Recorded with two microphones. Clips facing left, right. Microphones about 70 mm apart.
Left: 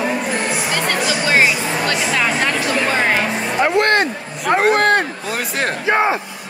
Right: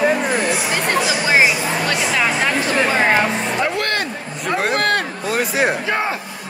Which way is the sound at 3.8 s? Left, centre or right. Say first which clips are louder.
Left 6 dB; left.